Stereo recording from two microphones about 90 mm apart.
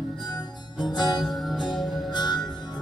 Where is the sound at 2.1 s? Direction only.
55° left (ahead or behind).